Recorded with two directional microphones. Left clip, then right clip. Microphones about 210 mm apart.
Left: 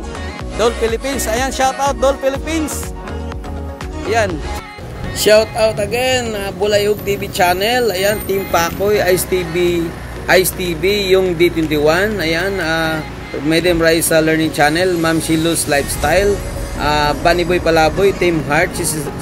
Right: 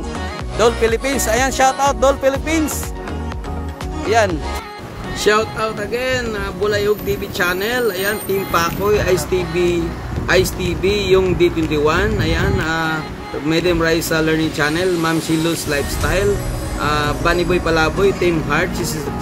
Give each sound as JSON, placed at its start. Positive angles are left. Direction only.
{"t": 0.6, "sound": "speech", "side_deg": -5}
{"t": 4.0, "sound": "speech", "side_deg": -5}
{"t": 5.2, "sound": "speech", "side_deg": 15}